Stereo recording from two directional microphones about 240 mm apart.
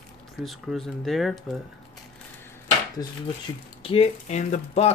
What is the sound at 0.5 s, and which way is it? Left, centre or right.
Speech, centre.